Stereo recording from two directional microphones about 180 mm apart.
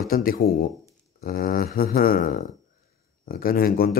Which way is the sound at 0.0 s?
55° left (ahead or behind).